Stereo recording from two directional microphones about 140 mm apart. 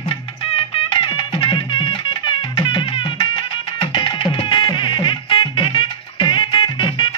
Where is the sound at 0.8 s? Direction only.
35° left (ahead or behind).